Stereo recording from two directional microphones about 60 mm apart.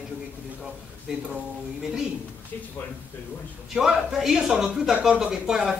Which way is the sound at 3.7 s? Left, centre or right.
Centre.